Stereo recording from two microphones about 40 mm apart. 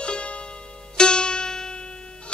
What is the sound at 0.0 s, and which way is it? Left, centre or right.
Music, left.